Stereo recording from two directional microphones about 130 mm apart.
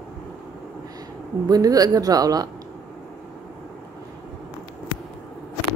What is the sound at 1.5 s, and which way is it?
Speech, 30° right (ahead or behind).